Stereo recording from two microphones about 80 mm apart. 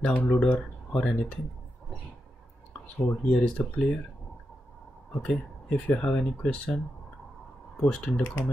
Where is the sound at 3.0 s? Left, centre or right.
Centre.